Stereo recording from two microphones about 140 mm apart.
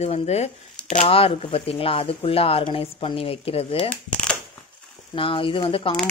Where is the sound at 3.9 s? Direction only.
10° left (ahead or behind).